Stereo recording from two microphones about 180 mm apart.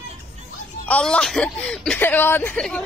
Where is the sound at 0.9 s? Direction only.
5° left (ahead or behind).